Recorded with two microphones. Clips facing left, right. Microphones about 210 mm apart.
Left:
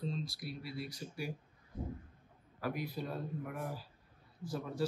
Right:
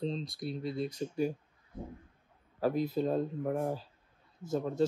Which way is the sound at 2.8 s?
25° right (ahead or behind).